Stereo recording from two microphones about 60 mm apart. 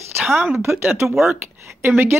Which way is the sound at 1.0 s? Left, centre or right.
Right.